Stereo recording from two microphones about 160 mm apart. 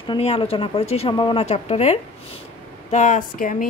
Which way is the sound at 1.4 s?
45° left (ahead or behind).